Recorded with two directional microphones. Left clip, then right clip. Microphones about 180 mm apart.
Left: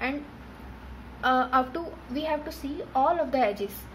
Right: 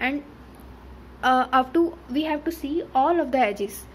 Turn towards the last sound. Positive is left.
turn(degrees=-45)  # may be behind; listen again after turning